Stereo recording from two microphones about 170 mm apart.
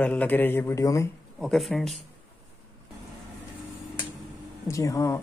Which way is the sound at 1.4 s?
Centre (ahead or behind).